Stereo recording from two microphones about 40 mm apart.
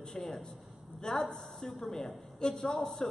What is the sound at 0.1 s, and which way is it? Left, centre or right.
A woman's voice, centre.